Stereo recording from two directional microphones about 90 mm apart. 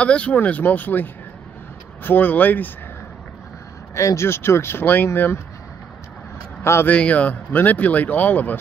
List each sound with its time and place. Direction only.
0.0 s speech: 15° left (ahead or behind)
3.9 s speech: 35° left (ahead or behind)
6.6 s speech: 30° left (ahead or behind)
6.9 s speech: 15° left (ahead or behind)